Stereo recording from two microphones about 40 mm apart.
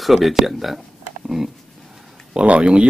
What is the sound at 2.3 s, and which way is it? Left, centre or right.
Speech, right.